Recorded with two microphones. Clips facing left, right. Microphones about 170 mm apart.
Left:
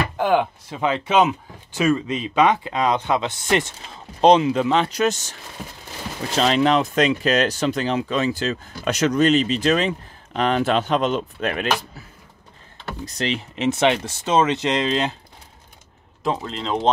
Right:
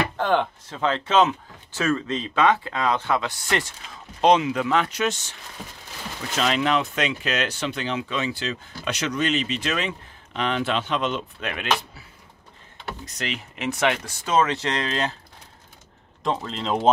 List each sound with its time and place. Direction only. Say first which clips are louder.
0.2 s speech: left 5 dB; 10° left (ahead or behind); by 4.9 s 25° left (ahead or behind)
4.9 s speech: left 5 dB; 40° left (ahead or behind)
6.3 s speech: left 5 dB; 35° left (ahead or behind)
13.0 s speech: left 8 dB; 30° left (ahead or behind)
16.2 s speech: left 2 dB; 5° left (ahead or behind)